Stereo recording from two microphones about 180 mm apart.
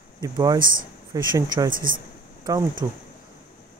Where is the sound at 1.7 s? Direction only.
50° right (ahead or behind).